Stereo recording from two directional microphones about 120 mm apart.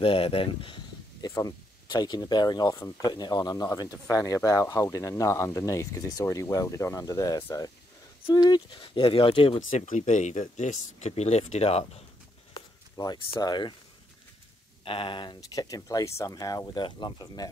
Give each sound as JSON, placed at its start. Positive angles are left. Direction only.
{"t": 0.0, "sound": "speech", "side_deg": 50}
{"t": 1.2, "sound": "speech", "side_deg": 30}
{"t": 8.7, "sound": "speech", "side_deg": 50}
{"t": 9.7, "sound": "speech", "side_deg": 85}
{"t": 12.5, "sound": "a sound", "side_deg": 35}
{"t": 13.4, "sound": "speech", "side_deg": 40}
{"t": 14.9, "sound": "speech", "side_deg": 45}